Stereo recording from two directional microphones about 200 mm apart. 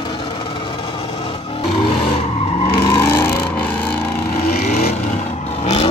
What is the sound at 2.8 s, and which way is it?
Vehicle, 15° left (ahead or behind).